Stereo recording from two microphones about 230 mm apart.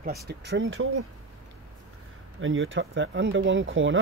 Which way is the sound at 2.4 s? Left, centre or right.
Right.